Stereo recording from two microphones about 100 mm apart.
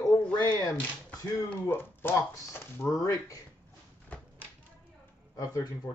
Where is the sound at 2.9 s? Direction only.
35° left (ahead or behind).